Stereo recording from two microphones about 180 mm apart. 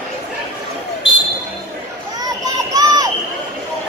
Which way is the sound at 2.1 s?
20° right (ahead or behind).